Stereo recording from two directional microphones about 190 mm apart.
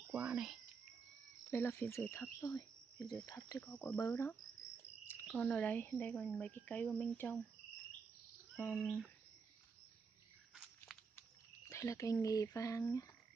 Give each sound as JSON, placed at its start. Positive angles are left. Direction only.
{"t": 0.1, "sound": "speech", "side_deg": -5}
{"t": 1.5, "sound": "cricket", "side_deg": 10}
{"t": 3.3, "sound": "speech", "side_deg": 15}
{"t": 5.2, "sound": "speech", "side_deg": 0}
{"t": 8.5, "sound": "speech", "side_deg": 5}
{"t": 11.7, "sound": "speech", "side_deg": 15}